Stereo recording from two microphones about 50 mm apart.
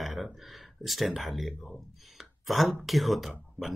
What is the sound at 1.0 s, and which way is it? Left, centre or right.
Speech, centre.